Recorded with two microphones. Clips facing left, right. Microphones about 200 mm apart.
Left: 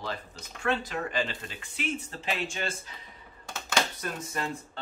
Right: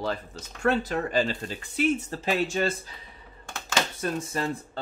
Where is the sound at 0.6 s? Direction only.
40° right (ahead or behind).